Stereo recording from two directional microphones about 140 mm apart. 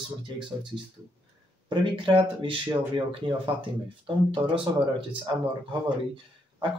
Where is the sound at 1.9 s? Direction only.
40° right (ahead or behind).